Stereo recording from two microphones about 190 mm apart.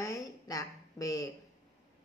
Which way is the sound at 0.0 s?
15° left (ahead or behind).